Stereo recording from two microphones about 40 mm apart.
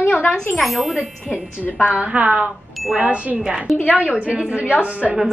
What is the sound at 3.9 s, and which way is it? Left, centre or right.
Speech, right.